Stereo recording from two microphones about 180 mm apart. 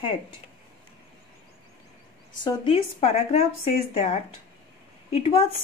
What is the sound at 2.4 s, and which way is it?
Speech, 30° left (ahead or behind).